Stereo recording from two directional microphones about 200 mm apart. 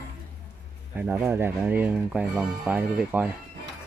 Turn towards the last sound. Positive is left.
turn(degrees=-10)  # may be behind; listen again after turning